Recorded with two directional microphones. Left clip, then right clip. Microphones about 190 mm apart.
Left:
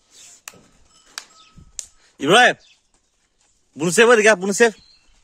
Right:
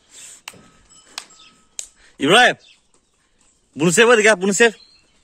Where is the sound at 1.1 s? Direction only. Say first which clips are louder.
Right 1 dB; 60° left (ahead or behind).